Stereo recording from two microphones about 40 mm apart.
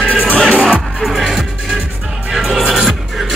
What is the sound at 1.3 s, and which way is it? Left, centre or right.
Music, centre.